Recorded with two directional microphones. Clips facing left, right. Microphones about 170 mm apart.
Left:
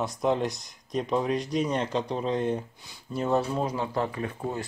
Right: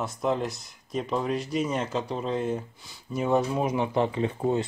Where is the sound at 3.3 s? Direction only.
15° right (ahead or behind).